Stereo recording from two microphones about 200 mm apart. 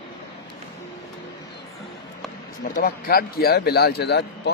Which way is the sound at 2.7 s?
45° left (ahead or behind).